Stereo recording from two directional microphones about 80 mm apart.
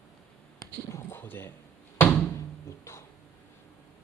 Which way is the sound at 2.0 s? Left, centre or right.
Left.